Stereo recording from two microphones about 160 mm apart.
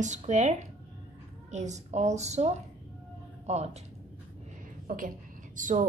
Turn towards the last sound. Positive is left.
turn(degrees=-50)  # may be behind; listen again after turning